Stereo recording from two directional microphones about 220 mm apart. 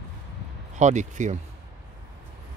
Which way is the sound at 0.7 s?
35° right (ahead or behind).